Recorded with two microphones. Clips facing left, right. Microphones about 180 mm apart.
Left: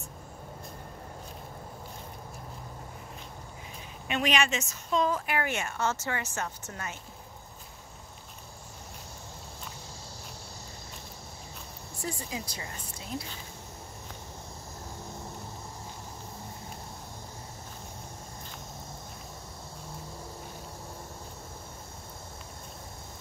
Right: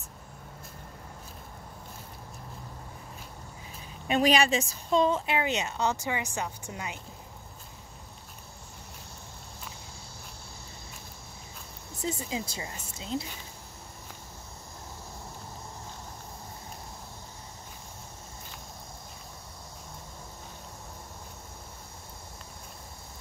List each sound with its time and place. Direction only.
4.1 s a woman's voice: 35° right (ahead or behind); by 7.0 s 15° right (ahead or behind)
12.0 s a woman's voice: 25° right (ahead or behind)